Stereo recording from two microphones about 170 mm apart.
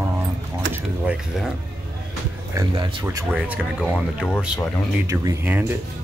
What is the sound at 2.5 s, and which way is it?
Speech, 30° right (ahead or behind).